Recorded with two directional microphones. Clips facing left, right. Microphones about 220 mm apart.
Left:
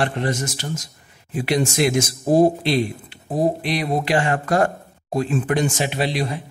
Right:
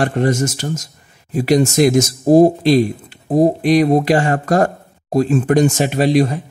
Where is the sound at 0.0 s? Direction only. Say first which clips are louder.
Right 6 dB; 45° right (ahead or behind).